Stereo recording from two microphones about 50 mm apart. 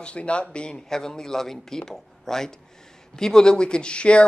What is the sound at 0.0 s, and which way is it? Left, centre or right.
A man's voice, left.